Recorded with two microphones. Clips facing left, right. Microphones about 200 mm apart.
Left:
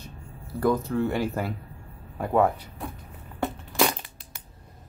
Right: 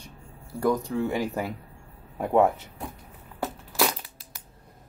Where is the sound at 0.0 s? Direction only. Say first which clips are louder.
Left 3 dB; 10° right (ahead or behind).